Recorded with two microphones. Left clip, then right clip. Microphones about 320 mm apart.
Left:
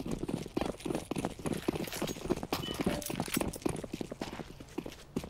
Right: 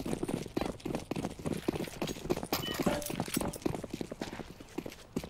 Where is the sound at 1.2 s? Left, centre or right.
Centre.